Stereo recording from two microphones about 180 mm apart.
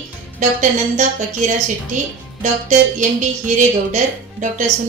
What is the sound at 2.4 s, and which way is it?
Speech, 45° right (ahead or behind).